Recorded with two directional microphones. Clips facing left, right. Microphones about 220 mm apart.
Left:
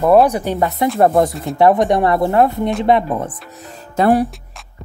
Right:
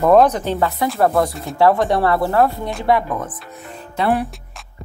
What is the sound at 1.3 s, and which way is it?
Speech, centre (ahead or behind).